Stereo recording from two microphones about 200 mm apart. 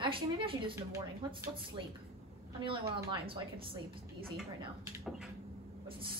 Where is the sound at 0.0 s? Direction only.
25° right (ahead or behind).